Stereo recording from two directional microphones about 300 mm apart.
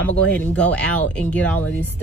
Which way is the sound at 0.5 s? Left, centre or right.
Centre.